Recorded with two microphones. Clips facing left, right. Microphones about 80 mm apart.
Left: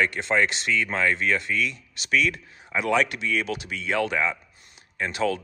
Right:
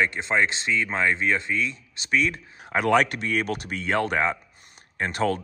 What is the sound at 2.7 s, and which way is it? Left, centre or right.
Speech, right.